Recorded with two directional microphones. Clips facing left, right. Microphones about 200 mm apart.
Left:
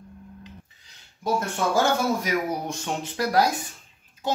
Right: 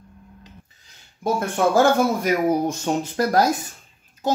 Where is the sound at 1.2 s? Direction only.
55° right (ahead or behind).